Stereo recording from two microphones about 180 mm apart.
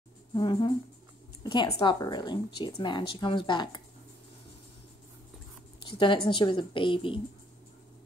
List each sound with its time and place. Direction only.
0.3 s a woman's voice: 25° left (ahead or behind)
5.8 s a woman's voice: 25° left (ahead or behind)